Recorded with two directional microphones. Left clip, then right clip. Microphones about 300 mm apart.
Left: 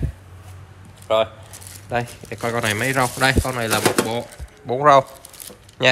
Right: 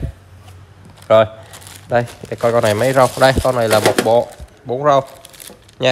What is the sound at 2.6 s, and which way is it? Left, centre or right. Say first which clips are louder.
Speech: right 6 dB; centre.